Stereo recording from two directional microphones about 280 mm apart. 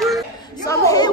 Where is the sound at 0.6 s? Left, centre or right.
Centre.